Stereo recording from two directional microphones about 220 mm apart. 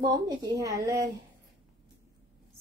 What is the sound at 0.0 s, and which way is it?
Speech, 15° right (ahead or behind).